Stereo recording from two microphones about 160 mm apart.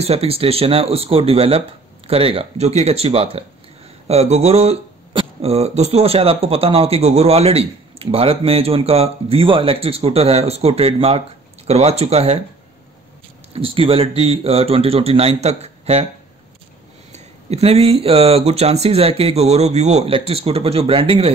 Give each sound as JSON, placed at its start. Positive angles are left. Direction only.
{"t": 0.0, "sound": "speech", "side_deg": -40}
{"t": 13.6, "sound": "speech", "side_deg": -35}
{"t": 17.1, "sound": "speech", "side_deg": -40}